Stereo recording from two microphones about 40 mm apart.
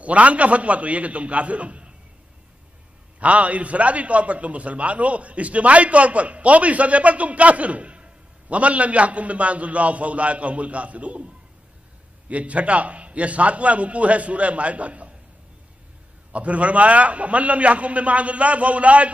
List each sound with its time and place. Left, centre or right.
0.0 s a man's voice: right
3.2 s a man's voice: right
12.3 s a man's voice: right
16.3 s a man's voice: right